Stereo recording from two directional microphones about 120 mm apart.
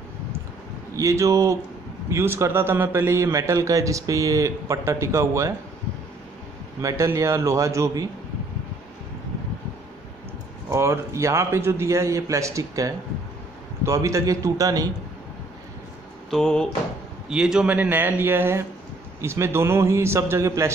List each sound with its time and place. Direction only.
0.9 s a man's voice: 25° right (ahead or behind)
6.8 s a man's voice: 25° right (ahead or behind)
10.7 s a man's voice: 25° right (ahead or behind)
16.3 s speech: 5° left (ahead or behind)
17.3 s a man's voice: 5° right (ahead or behind); by 20.7 s 25° right (ahead or behind)